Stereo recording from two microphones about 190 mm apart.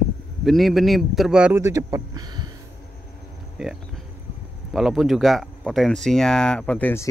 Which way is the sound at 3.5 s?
5° right (ahead or behind).